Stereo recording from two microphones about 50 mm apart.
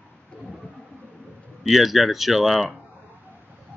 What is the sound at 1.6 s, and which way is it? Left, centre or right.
Speech, centre.